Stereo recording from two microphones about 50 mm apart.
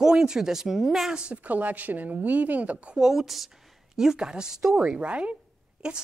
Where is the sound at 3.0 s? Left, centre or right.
Centre.